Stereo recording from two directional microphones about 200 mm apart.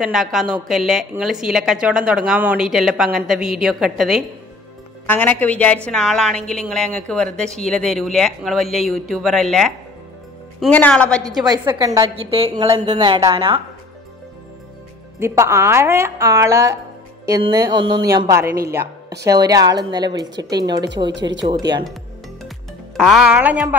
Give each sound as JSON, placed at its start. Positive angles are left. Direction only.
{"t": 0.0, "sound": "a woman's voice", "side_deg": 0}
{"t": 5.0, "sound": "a woman's voice", "side_deg": 10}
{"t": 11.4, "sound": "a woman's voice", "side_deg": -20}
{"t": 15.1, "sound": "a woman's voice", "side_deg": -15}
{"t": 18.7, "sound": "a sound", "side_deg": -10}
{"t": 19.2, "sound": "a woman's voice", "side_deg": -20}
{"t": 22.9, "sound": "a woman's voice", "side_deg": 0}